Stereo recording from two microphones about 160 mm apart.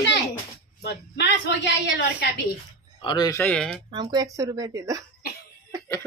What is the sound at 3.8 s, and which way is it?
Speech, 25° right (ahead or behind).